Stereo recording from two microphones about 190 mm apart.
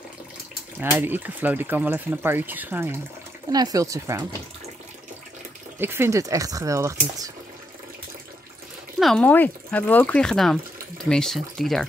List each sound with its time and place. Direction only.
0.7 s speech: 10° right (ahead or behind)
5.8 s speech: 10° right (ahead or behind)
9.0 s speech: 5° left (ahead or behind)